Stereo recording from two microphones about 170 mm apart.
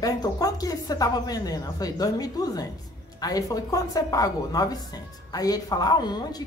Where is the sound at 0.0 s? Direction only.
20° left (ahead or behind).